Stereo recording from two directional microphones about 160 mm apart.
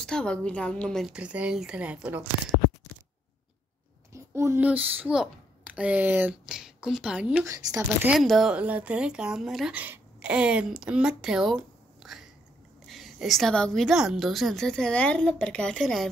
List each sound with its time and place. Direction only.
0.0 s a woman's voice: 5° left (ahead or behind)
4.1 s a child's voice: 20° right (ahead or behind)
7.4 s speech: 20° right (ahead or behind)
8.1 s a woman's voice: centre (ahead or behind)